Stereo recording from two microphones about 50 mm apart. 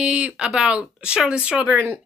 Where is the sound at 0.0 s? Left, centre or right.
Centre.